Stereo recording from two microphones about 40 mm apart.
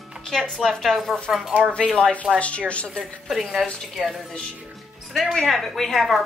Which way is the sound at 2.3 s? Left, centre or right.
Left.